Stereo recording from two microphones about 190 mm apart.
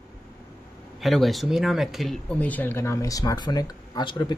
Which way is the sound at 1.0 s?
Centre (ahead or behind).